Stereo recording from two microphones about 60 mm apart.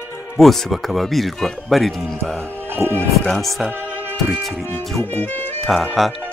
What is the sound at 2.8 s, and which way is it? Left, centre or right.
Speech, right.